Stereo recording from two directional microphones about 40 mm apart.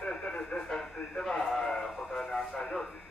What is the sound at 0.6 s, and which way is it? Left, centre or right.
Radio, centre.